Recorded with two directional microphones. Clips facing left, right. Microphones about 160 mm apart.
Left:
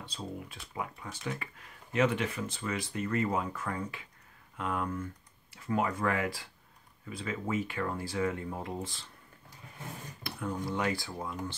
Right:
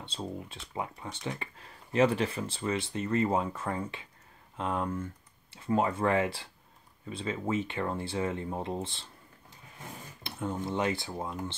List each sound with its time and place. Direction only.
0.0 s speech: 25° right (ahead or behind)
10.2 s speech: 25° right (ahead or behind)